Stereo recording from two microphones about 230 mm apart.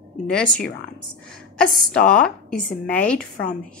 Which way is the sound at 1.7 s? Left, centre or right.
Centre.